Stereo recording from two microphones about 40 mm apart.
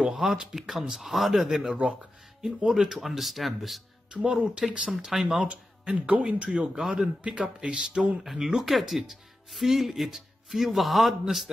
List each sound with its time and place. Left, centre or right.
0.0 s speech: centre
4.1 s speech: centre
5.5 s speech: right
6.4 s speech: right
6.8 s speech: centre
7.2 s speech: right
8.2 s speech: centre